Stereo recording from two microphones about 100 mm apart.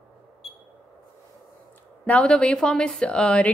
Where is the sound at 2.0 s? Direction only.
10° left (ahead or behind).